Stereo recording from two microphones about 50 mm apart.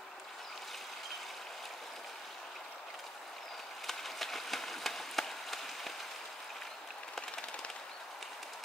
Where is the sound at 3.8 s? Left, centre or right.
Centre.